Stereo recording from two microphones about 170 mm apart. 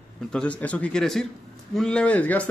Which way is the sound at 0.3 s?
5° left (ahead or behind).